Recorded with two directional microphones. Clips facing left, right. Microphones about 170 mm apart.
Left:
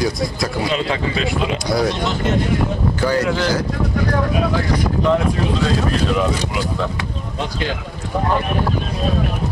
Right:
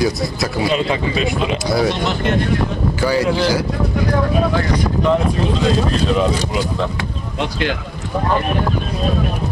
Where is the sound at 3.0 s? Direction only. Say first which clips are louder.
Right 2 dB; 10° right (ahead or behind).